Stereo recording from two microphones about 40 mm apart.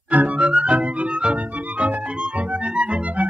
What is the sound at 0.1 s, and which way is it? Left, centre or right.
Music, right.